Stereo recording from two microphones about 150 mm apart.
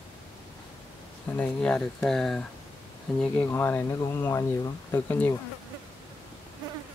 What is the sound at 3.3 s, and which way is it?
Speech, 15° left (ahead or behind).